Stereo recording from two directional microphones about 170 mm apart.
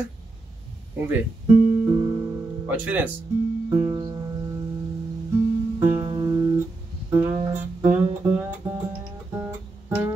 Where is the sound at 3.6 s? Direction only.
25° right (ahead or behind).